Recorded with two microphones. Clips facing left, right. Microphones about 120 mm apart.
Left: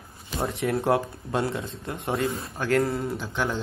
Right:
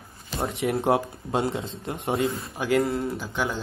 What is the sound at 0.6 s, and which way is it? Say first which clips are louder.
Speech: right 1 dB; 25° right (ahead or behind).